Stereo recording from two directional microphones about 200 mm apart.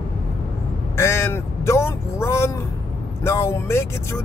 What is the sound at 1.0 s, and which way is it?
Speech, 10° left (ahead or behind).